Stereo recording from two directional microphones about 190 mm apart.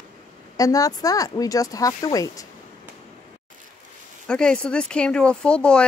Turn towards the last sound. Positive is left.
turn(degrees=5)  # may be behind; listen again after turning